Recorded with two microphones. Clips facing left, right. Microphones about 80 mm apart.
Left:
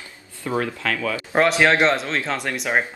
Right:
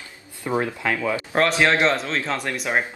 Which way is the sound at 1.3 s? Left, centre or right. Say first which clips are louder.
Left 2 dB; centre.